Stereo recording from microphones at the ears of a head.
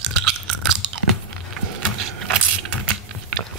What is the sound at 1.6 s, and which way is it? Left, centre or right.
Keys jangling, right.